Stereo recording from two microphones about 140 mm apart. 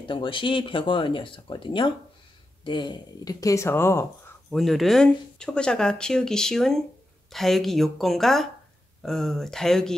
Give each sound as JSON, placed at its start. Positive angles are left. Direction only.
{"t": 0.0, "sound": "speech", "side_deg": 35}
{"t": 4.5, "sound": "speech", "side_deg": 0}